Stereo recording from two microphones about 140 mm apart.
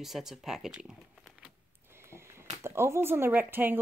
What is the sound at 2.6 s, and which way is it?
Speech, 20° right (ahead or behind).